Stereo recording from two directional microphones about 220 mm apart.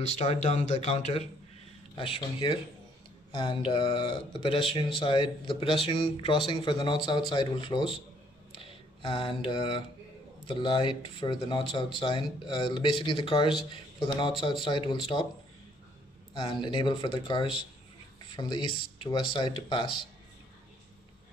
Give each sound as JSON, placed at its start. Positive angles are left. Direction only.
{"t": 0.2, "sound": "speech", "side_deg": 30}
{"t": 16.3, "sound": "speech", "side_deg": 20}